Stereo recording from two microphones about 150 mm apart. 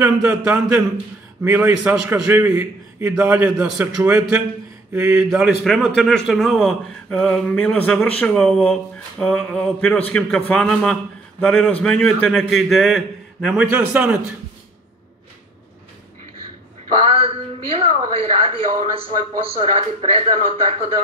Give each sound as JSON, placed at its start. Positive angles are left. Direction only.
{"t": 0.0, "sound": "a man's voice", "side_deg": -10}
{"t": 17.0, "sound": "speech", "side_deg": -40}
{"t": 19.6, "sound": "speech", "side_deg": -45}